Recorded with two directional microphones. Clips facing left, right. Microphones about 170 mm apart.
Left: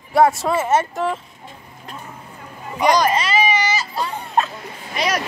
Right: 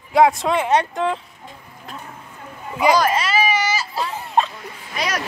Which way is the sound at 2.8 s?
5° right (ahead or behind).